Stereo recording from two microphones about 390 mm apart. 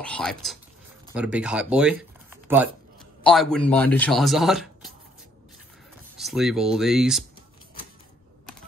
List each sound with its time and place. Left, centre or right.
0.0 s speech: centre
6.1 s speech: centre